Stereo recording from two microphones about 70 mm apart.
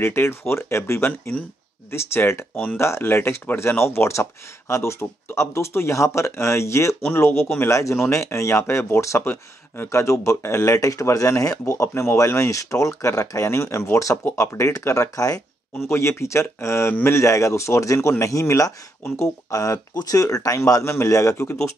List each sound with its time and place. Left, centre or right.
0.0 s speech: left
7.2 s speech: left
9.2 s speech: left
9.8 s speech: left
15.9 s speech: left